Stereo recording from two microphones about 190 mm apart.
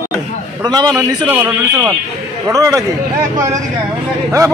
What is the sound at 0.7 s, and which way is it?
Speech, 20° right (ahead or behind).